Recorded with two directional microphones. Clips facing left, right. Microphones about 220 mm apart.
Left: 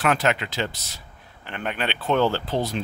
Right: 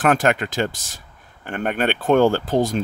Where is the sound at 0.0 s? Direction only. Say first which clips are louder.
Right 4 dB; 45° right (ahead or behind).